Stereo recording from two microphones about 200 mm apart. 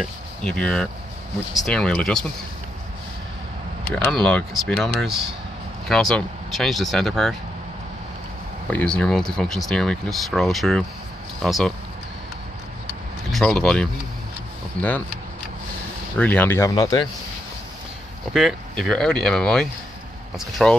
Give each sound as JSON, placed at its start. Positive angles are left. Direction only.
{"t": 0.0, "sound": "speech", "side_deg": 5}
{"t": 3.9, "sound": "speech", "side_deg": 5}
{"t": 8.6, "sound": "speech", "side_deg": 5}
{"t": 13.3, "sound": "speech", "side_deg": 0}
{"t": 16.2, "sound": "speech", "side_deg": 10}
{"t": 18.3, "sound": "speech", "side_deg": 0}